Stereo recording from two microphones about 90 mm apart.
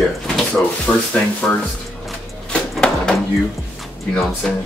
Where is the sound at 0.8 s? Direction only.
15° left (ahead or behind).